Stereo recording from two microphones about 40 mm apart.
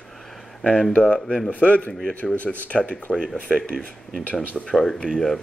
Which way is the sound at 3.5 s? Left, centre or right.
Left.